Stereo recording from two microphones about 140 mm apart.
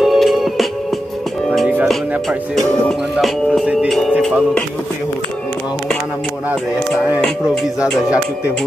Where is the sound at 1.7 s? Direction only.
Centre (ahead or behind).